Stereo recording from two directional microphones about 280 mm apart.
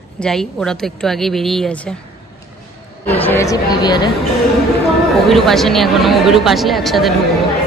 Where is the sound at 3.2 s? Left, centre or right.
Centre.